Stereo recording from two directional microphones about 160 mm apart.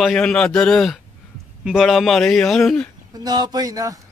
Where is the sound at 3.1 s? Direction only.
25° right (ahead or behind).